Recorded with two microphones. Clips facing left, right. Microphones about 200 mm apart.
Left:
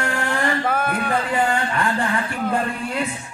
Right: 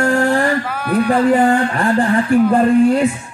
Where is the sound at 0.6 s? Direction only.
50° left (ahead or behind).